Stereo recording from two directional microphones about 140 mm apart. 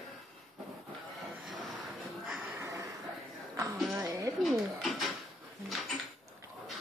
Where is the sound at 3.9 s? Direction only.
15° right (ahead or behind).